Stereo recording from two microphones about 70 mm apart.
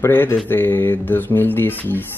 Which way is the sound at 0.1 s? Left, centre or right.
Left.